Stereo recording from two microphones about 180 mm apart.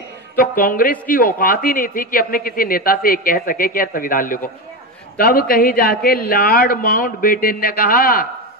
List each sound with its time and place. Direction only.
0.4 s a man's voice: 50° left (ahead or behind)